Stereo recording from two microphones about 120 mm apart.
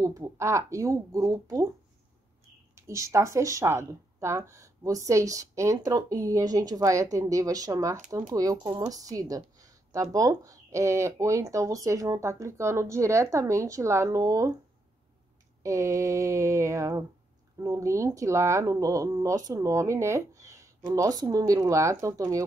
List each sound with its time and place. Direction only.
0.0 s speech: 30° right (ahead or behind)
2.7 s speech: 25° right (ahead or behind)
15.6 s speech: 25° right (ahead or behind)